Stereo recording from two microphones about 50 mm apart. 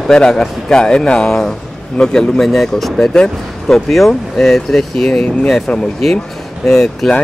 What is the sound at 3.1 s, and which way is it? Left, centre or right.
Speech, centre.